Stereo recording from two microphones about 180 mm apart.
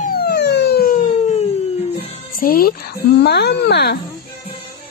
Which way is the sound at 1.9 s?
55° left (ahead or behind).